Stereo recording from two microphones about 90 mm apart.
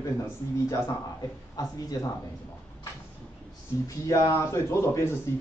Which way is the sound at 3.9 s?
40° left (ahead or behind).